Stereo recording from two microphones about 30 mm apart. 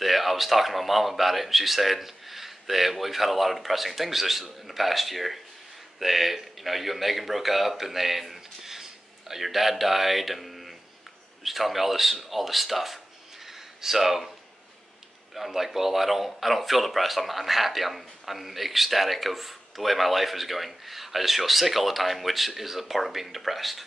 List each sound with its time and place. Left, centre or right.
0.0 s a man's voice: centre
13.5 s a sound: centre
15.3 s speech: centre